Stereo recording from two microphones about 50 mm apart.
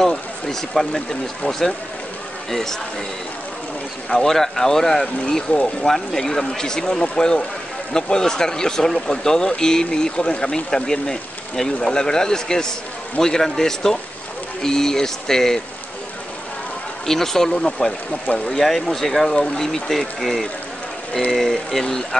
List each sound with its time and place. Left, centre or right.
0.0 s speech: centre
4.1 s speech: centre
5.5 s speech: left
5.9 s speech: centre
17.0 s speech: centre
18.3 s speech: left
18.6 s speech: centre